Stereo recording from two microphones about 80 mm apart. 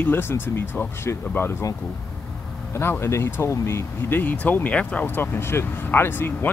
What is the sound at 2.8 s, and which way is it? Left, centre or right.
Speech, left.